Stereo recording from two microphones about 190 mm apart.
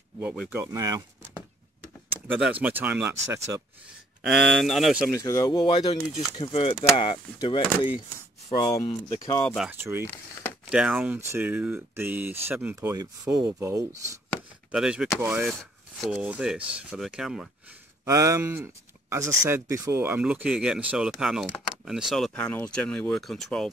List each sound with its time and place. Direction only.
0.2 s speech: 10° right (ahead or behind)
2.1 s a sound: 10° right (ahead or behind)
2.6 s speech: 10° right (ahead or behind)
4.2 s speech: centre (ahead or behind)
5.2 s speech: 15° left (ahead or behind)
9.2 s speech: 25° left (ahead or behind)
9.6 s speech: 10° right (ahead or behind)
14.7 s speech: 5° right (ahead or behind)
18.0 s speech: 15° right (ahead or behind); by 23.7 s centre (ahead or behind)